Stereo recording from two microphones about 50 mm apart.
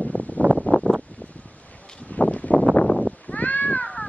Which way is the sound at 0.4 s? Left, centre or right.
Right.